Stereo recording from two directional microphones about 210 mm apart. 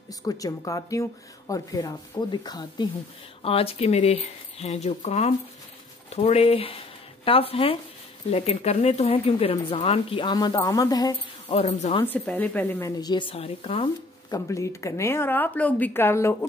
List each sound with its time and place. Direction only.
0.1 s speech: 15° left (ahead or behind)
12.0 s speech: 10° left (ahead or behind); by 13.8 s 25° left (ahead or behind)
14.3 s speech: 15° left (ahead or behind)